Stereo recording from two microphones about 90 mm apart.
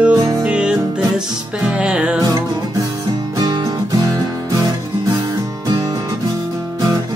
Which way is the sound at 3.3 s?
45° right (ahead or behind).